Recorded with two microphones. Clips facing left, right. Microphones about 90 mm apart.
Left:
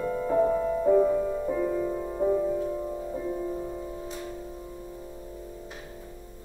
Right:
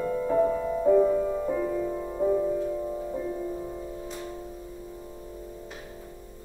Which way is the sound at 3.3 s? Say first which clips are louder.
Left 1 dB; 5° left (ahead or behind).